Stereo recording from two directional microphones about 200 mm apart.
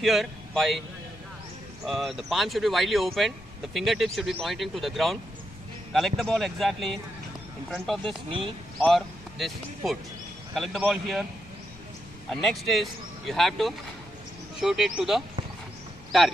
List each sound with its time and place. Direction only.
0.0 s speech: centre (ahead or behind)
1.9 s speech: centre (ahead or behind)
8.3 s speech: 25° right (ahead or behind)
8.7 s speech: centre (ahead or behind)
12.3 s speech: centre (ahead or behind)